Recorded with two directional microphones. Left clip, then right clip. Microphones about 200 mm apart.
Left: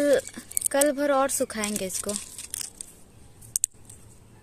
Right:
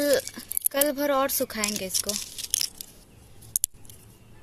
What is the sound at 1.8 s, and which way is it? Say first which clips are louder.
Speech: right 2 dB; 20° left (ahead or behind).